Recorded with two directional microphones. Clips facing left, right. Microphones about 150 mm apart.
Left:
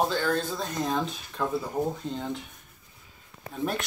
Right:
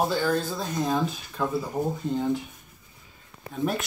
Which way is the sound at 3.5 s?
Centre (ahead or behind).